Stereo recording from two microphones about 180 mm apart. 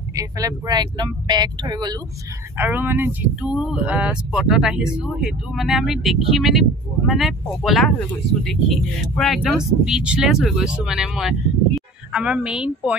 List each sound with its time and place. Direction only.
0.1 s speech: 20° right (ahead or behind)
2.5 s speech: 10° right (ahead or behind)